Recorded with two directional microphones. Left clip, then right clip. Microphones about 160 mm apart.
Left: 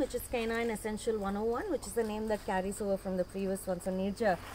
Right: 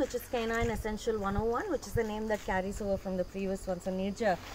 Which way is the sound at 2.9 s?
20° left (ahead or behind).